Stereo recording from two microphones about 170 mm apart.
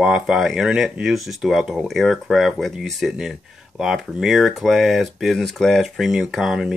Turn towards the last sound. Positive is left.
turn(degrees=-5)  # may be behind; listen again after turning